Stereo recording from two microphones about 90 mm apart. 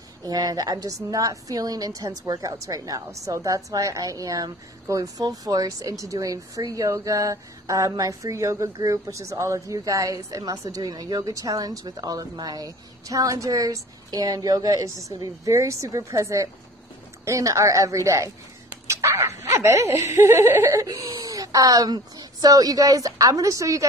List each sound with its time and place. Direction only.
0.2 s a woman's voice: 45° right (ahead or behind); by 20.7 s 25° right (ahead or behind)
20.7 s speech: 40° right (ahead or behind)